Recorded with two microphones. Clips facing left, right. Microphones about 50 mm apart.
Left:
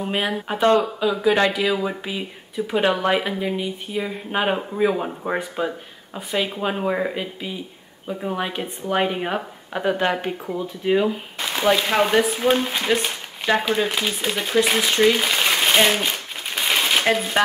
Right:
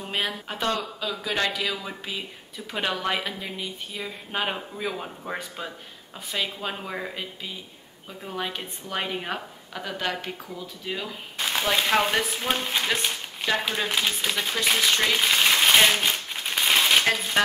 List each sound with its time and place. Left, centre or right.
0.0 s speech: centre
9.7 s speech: left
11.3 s a sound: centre
11.7 s speech: centre